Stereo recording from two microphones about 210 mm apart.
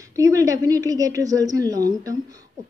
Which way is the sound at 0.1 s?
15° right (ahead or behind).